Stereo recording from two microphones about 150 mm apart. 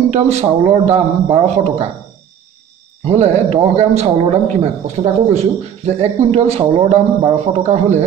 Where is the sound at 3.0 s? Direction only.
45° right (ahead or behind).